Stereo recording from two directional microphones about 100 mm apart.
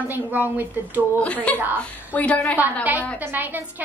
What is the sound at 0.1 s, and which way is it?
Speech, 20° right (ahead or behind).